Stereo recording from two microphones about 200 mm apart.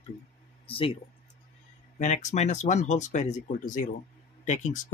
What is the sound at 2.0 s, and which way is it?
Speech, 35° left (ahead or behind).